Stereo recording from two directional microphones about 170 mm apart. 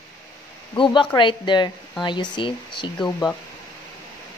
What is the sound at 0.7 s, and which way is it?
Speech, 25° left (ahead or behind).